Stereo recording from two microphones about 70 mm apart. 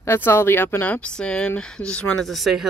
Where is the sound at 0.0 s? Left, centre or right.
Left.